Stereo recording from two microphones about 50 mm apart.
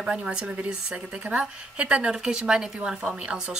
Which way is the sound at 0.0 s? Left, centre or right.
Centre.